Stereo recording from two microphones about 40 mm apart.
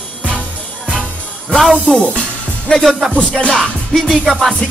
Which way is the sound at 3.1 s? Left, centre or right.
Left.